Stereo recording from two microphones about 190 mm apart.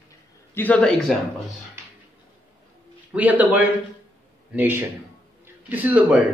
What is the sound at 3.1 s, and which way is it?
A man's voice, 10° right (ahead or behind).